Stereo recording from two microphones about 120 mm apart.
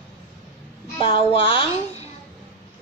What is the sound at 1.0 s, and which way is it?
A child's voice, 50° left (ahead or behind).